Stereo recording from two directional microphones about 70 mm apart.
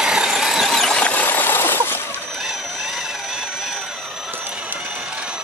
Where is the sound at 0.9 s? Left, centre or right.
Left.